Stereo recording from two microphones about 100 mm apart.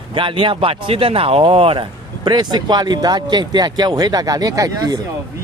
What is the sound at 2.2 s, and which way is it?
Speech, 45° right (ahead or behind).